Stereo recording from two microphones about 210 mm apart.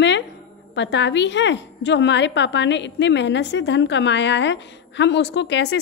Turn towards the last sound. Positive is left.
turn(degrees=55)  # may be behind; listen again after turning